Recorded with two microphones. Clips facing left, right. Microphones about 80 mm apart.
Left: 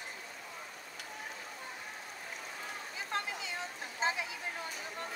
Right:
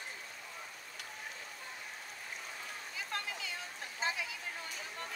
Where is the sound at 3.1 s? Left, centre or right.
Left.